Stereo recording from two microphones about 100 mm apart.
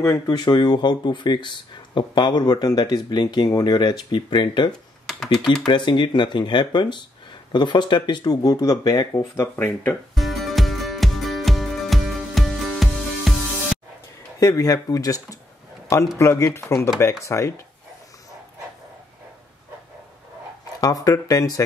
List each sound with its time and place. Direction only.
0.3 s speech: 45° left (ahead or behind)
5.7 s speech: 50° left (ahead or behind)
9.4 s speech: 20° left (ahead or behind)
10.1 s music: centre (ahead or behind)
14.4 s speech: 35° left (ahead or behind)
20.8 s speech: 35° left (ahead or behind)